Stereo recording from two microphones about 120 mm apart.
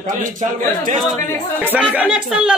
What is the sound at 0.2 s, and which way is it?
Speech, 90° right.